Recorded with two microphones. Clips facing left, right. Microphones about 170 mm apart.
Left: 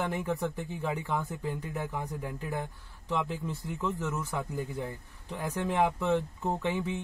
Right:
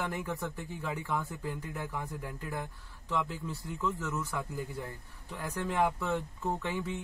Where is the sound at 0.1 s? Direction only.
20° left (ahead or behind).